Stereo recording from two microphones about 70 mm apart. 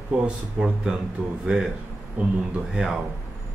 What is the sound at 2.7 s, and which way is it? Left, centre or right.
Speech, centre.